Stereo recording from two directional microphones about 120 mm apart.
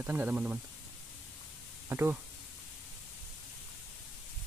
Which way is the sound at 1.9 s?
20° right (ahead or behind).